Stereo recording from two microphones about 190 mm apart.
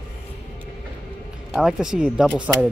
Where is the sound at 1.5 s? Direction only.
5° right (ahead or behind).